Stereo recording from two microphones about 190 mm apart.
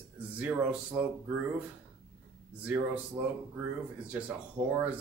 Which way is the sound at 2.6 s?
5° right (ahead or behind).